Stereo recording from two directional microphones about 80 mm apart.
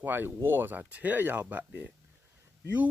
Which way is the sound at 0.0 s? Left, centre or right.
Right.